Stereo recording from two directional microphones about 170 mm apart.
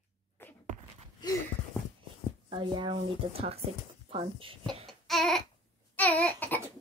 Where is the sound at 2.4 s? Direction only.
30° right (ahead or behind).